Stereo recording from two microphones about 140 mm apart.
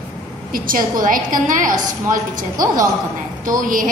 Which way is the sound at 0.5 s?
80° right.